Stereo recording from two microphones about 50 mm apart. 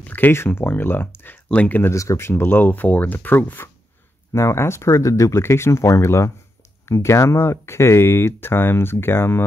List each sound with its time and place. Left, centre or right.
0.0 s a sound: left
0.3 s speech: left
1.5 s speech: left
1.9 s speech: left
2.4 s speech: left
4.3 s speech: left
5.4 s speech: left